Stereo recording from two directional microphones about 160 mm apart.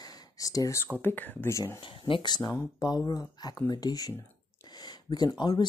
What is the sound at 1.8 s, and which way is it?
Speech, 30° left (ahead or behind).